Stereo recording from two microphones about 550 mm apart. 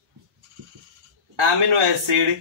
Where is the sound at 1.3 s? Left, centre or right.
Right.